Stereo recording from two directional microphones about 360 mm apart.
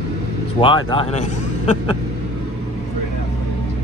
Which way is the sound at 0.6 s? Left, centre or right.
Centre.